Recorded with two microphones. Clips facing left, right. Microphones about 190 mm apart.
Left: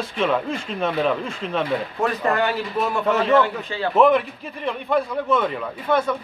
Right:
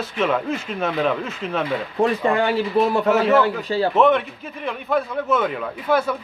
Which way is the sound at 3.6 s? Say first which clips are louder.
Right 5 dB; 35° right (ahead or behind).